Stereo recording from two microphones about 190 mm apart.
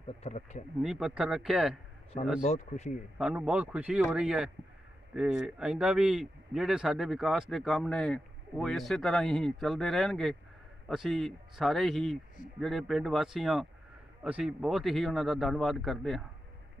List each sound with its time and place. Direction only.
0.2 s speech: 35° left (ahead or behind)
0.7 s speech: 5° right (ahead or behind)
2.4 s speech: 35° left (ahead or behind)
3.2 s speech: 5° right (ahead or behind)